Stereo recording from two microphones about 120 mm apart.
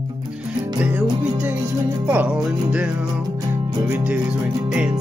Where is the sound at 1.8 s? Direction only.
30° right (ahead or behind).